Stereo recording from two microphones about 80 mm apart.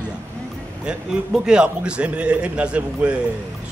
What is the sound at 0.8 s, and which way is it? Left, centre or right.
A man's voice, centre.